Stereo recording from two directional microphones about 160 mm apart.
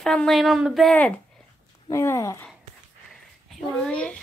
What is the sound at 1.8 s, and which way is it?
Speech, 20° left (ahead or behind).